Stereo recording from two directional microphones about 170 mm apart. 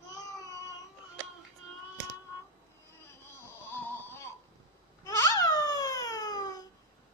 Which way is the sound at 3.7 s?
15° left (ahead or behind).